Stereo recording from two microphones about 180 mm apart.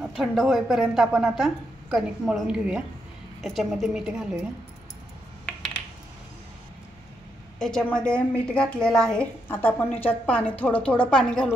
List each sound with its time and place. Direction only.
0.0 s a woman's voice: centre (ahead or behind)
7.5 s a woman's voice: 5° left (ahead or behind)